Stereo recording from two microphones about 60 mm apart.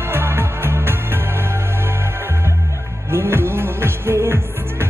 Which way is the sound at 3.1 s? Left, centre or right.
Right.